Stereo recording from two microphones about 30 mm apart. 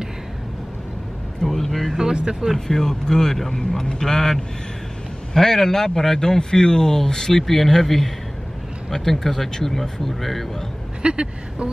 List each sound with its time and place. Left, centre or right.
1.4 s speech: centre
2.7 s speech: centre
11.0 s speech: right